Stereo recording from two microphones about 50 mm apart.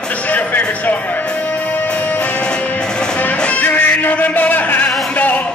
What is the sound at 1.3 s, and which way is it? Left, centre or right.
Music, left.